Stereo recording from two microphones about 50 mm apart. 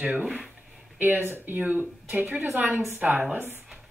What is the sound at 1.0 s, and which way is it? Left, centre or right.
Speech, right.